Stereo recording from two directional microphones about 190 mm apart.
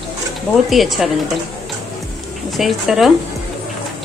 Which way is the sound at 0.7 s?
Centre (ahead or behind).